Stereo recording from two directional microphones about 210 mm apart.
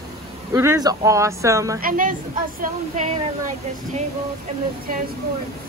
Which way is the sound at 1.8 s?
40° right (ahead or behind).